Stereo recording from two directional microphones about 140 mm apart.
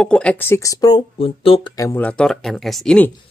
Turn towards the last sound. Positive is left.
turn(degrees=5)  # may be behind; listen again after turning